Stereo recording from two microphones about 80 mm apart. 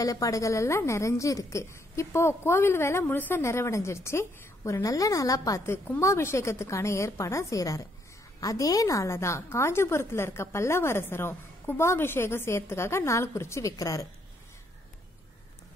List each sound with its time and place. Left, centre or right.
0.0 s a woman's voice: left
3.4 s a woman's voice: left
5.7 s a woman's voice: left